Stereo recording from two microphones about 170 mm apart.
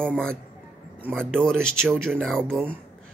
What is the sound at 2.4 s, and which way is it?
Speech, 10° right (ahead or behind).